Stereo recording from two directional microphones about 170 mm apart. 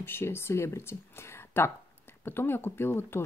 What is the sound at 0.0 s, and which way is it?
Speech, 15° left (ahead or behind).